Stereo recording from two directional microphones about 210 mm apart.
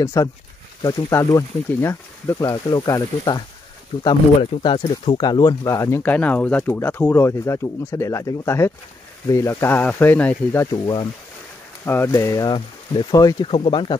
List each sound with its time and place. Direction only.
0.0 s speech: 15° left (ahead or behind)